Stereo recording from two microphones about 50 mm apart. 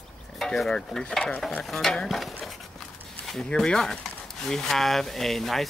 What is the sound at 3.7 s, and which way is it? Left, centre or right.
Stir, centre.